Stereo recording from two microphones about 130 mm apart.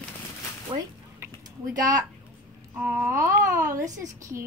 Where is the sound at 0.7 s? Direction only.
45° right (ahead or behind).